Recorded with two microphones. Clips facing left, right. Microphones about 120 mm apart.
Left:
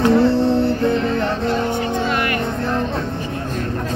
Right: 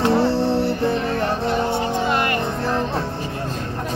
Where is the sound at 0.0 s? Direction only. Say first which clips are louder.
Left 3 dB; 30° right (ahead or behind).